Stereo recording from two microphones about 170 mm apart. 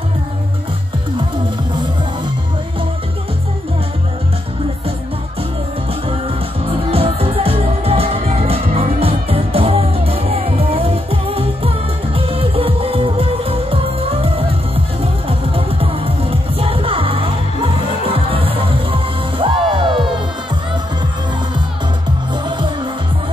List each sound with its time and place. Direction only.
6.9 s music: 35° right (ahead or behind)